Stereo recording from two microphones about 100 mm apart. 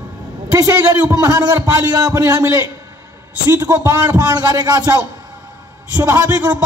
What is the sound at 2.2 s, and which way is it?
Speech, 25° right (ahead or behind).